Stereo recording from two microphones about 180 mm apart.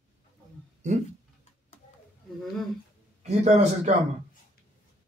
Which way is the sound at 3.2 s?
40° right (ahead or behind).